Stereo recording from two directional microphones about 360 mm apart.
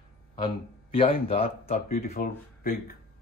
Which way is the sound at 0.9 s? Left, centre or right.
Centre.